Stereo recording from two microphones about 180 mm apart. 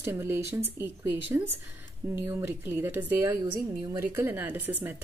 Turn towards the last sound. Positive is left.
turn(degrees=-10)  # may be behind; listen again after turning